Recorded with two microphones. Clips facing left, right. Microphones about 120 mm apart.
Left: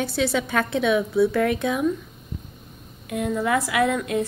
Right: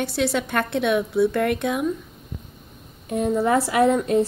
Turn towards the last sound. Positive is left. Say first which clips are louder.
# right 4 dB
turn(degrees=-30)  # may be behind; listen again after turning